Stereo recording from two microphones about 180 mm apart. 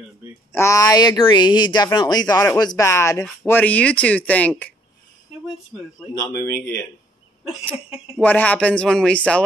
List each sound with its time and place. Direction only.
0.5 s speech: 15° left (ahead or behind)
6.1 s speech: 15° left (ahead or behind)
8.2 s speech: 10° left (ahead or behind)